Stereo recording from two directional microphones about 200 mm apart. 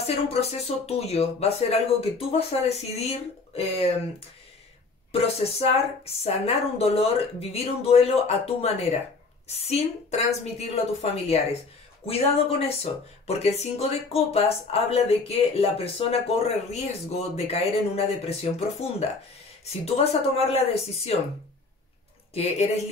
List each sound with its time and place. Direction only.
0.0 s speech: 30° left (ahead or behind)
5.1 s speech: 30° left (ahead or behind)
22.3 s speech: 35° left (ahead or behind)